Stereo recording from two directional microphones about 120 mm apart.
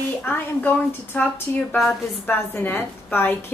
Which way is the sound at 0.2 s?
15° left (ahead or behind).